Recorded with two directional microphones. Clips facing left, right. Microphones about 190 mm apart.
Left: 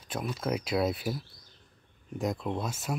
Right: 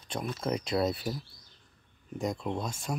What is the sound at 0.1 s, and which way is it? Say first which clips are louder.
Speech: even; 5° left (ahead or behind).